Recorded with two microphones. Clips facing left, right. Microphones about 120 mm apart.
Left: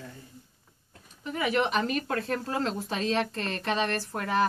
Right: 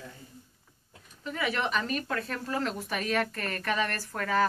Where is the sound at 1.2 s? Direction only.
20° left (ahead or behind).